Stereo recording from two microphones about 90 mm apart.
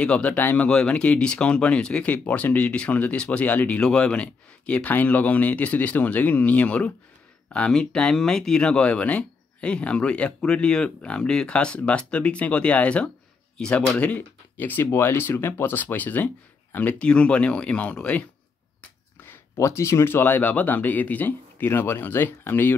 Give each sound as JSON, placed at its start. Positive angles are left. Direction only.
{"t": 0.0, "sound": "speech", "side_deg": 15}
{"t": 19.2, "sound": "speech", "side_deg": 30}